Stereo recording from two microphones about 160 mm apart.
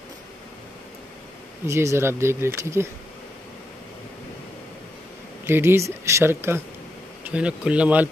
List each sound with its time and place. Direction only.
1.7 s speech: 15° right (ahead or behind)
5.5 s speech: 15° right (ahead or behind)